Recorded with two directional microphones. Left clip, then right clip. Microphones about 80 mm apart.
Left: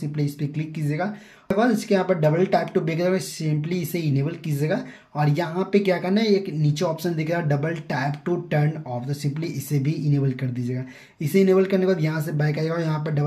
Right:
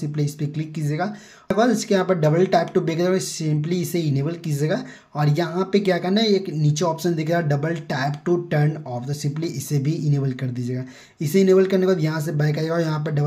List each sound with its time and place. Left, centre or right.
0.2 s speech: right
1.6 s speech: right